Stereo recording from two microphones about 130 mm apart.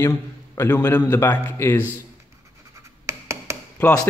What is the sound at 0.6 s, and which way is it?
A man's voice, 20° left (ahead or behind).